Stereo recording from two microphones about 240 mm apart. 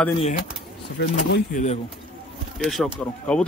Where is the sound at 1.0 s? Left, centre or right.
Left.